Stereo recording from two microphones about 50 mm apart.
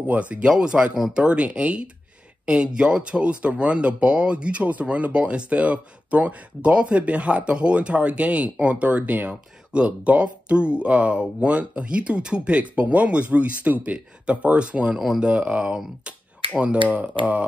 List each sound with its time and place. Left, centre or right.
0.0 s speech: right
15.0 s speech: centre
15.2 s speech: right